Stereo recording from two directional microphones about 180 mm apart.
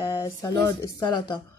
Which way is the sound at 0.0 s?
15° left (ahead or behind).